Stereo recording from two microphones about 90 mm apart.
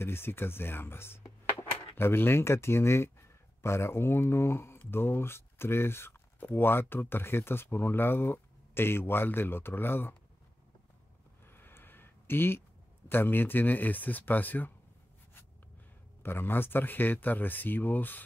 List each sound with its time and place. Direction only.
0.0 s speech: 25° left (ahead or behind)
11.4 s a sound: 25° left (ahead or behind)
13.1 s speech: 25° left (ahead or behind)
16.2 s speech: 25° left (ahead or behind)